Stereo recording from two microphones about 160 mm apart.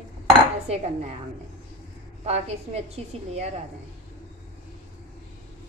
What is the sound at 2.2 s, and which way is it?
A woman's voice, 40° right (ahead or behind).